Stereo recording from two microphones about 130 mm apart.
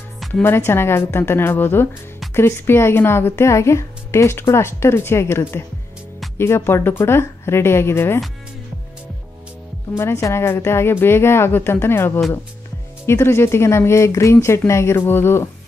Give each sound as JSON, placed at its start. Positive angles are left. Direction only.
{"t": 0.4, "sound": "a woman's voice", "side_deg": 20}
{"t": 9.9, "sound": "speech", "side_deg": 20}